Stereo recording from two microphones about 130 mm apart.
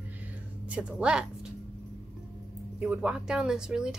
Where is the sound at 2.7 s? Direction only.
10° right (ahead or behind).